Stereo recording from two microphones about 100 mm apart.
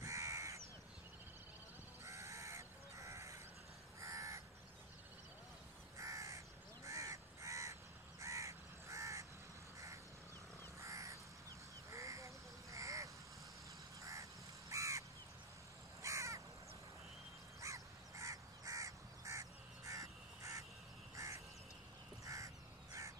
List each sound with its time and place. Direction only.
0.0 s crow: 30° right (ahead or behind)
2.0 s crow: 30° right (ahead or behind)
5.9 s crow: 30° right (ahead or behind)
10.8 s crow: 30° right (ahead or behind)
11.9 s duck: 30° right (ahead or behind)
12.7 s crow: 30° right (ahead or behind)
14.7 s crow: 30° right (ahead or behind)
17.6 s crow: 30° right (ahead or behind)